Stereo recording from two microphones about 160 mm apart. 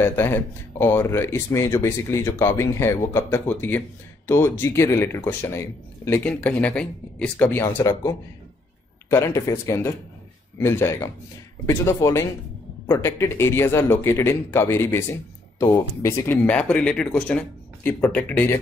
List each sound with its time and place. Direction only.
0.0 s speech: 15° left (ahead or behind)